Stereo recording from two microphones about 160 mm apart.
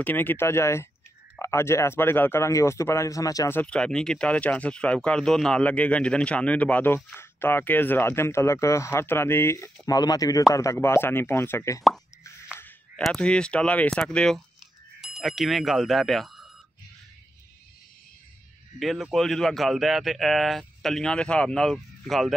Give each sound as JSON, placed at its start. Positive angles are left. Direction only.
{"t": 0.0, "sound": "speech", "side_deg": 10}
{"t": 12.5, "sound": "a sound", "side_deg": 10}
{"t": 13.0, "sound": "a man's voice", "side_deg": 5}
{"t": 18.8, "sound": "a man's voice", "side_deg": 0}